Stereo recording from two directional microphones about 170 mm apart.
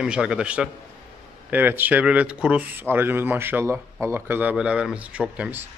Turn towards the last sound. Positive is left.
turn(degrees=-5)  # may be behind; listen again after turning